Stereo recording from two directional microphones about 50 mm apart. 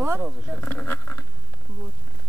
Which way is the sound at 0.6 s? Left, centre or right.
Left.